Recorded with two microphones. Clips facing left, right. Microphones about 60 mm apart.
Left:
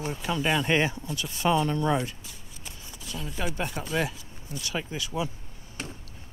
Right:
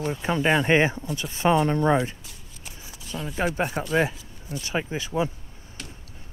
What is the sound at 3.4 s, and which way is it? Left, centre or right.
Speech, right.